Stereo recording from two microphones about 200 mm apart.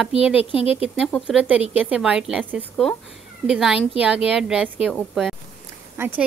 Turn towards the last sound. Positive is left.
turn(degrees=-10)  # may be behind; listen again after turning